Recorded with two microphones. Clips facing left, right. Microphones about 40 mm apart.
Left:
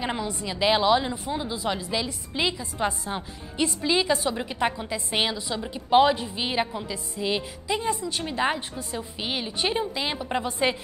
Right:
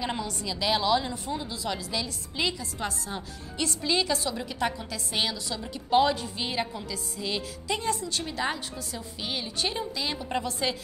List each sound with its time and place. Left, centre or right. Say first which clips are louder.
0.0 s a woman's voice: left 2 dB; left